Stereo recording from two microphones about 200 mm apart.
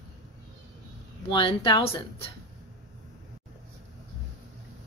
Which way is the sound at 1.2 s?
25° left (ahead or behind).